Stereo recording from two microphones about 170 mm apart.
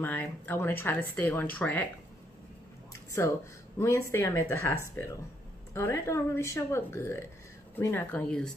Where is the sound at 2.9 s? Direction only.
15° left (ahead or behind).